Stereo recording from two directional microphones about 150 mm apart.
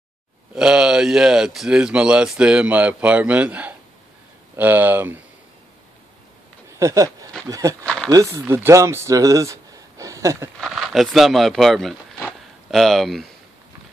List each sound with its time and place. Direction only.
0.6 s speech: 5° right (ahead or behind)
6.8 s a sound: 20° right (ahead or behind)
7.8 s speech: 5° left (ahead or behind)
8.1 s speech: 20° right (ahead or behind)
10.6 s speech: centre (ahead or behind)
12.3 s a sound: centre (ahead or behind)